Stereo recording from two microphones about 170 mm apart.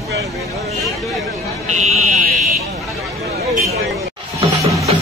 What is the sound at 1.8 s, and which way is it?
Fire alarm, 40° right (ahead or behind).